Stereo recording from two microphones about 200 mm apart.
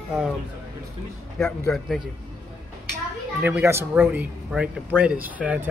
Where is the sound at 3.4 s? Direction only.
15° right (ahead or behind).